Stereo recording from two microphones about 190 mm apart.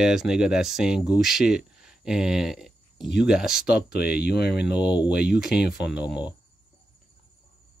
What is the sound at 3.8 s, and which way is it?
Speech, 55° left (ahead or behind).